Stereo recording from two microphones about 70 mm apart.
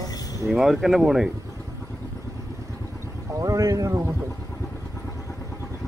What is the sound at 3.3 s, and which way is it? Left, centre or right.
Speech, right.